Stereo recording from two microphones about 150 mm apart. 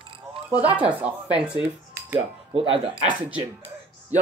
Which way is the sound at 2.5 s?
35° right (ahead or behind).